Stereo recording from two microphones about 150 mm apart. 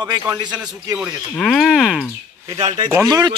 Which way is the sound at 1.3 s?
5° left (ahead or behind).